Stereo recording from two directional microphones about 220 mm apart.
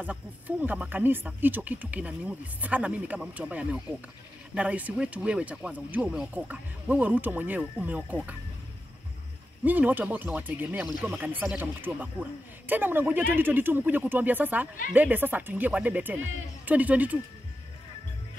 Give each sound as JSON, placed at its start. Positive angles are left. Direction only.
{"t": 0.0, "sound": "speech", "side_deg": -5}
{"t": 9.7, "sound": "speech", "side_deg": -10}
{"t": 16.2, "sound": "speech", "side_deg": -65}
{"t": 16.6, "sound": "speech", "side_deg": -5}